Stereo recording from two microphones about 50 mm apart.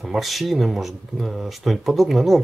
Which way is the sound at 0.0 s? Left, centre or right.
Centre.